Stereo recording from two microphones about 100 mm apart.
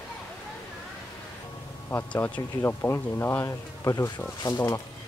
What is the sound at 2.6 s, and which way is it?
Speech, 25° left (ahead or behind).